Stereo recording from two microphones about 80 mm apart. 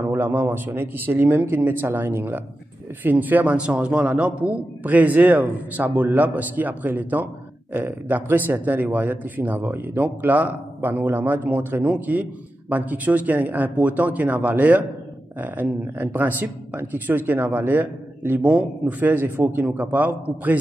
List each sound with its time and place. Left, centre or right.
0.1 s a man's voice: right